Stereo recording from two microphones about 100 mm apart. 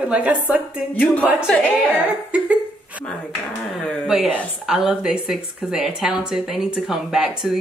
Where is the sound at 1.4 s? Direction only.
15° left (ahead or behind).